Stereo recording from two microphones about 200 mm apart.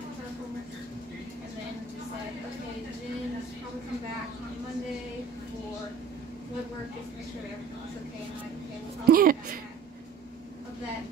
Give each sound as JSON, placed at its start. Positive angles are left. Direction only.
{"t": 9.0, "sound": "a woman's voice", "side_deg": -45}